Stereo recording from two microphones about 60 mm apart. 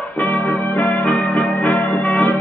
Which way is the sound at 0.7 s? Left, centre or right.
Centre.